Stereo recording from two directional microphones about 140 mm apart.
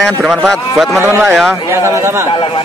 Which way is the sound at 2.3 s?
40° left (ahead or behind).